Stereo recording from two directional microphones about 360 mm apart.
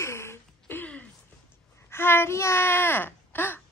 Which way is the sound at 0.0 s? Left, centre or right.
Centre.